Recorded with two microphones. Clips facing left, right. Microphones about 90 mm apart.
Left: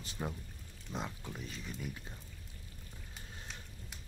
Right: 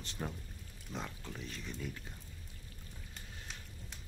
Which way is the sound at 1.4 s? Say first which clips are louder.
Right 2 dB; 5° left (ahead or behind).